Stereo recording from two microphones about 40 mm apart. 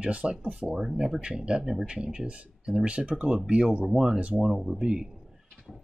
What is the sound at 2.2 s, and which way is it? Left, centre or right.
Speech, right.